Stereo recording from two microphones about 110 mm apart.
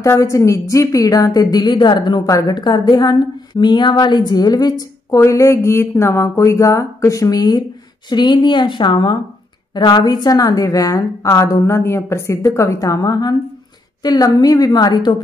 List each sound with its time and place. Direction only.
0.0 s a woman's voice: 30° left (ahead or behind)